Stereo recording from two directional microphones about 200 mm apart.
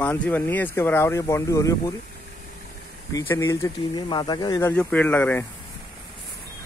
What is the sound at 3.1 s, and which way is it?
Speech, 15° left (ahead or behind).